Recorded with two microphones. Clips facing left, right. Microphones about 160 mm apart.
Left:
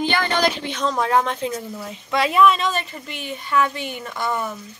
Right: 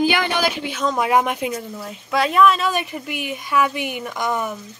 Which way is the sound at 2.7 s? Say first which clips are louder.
Right 3 dB; 15° right (ahead or behind).